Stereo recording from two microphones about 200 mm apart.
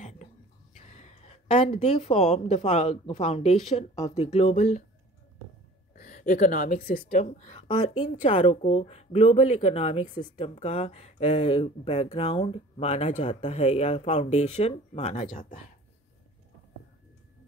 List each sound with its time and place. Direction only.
0.7 s speech: 35° left (ahead or behind)
5.9 s speech: 40° left (ahead or behind)